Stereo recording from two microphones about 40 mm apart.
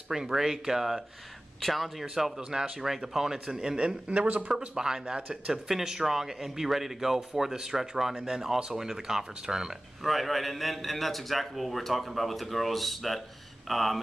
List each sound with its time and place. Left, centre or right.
0.1 s a man's voice: centre
1.6 s a man's voice: centre
2.0 s a man's voice: centre
3.5 s a man's voice: right
4.1 s speech: right
4.5 s a man's voice: centre
5.5 s a man's voice: centre
10.0 s a man's voice: centre